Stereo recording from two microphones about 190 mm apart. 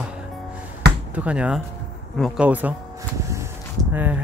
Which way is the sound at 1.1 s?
5° right (ahead or behind).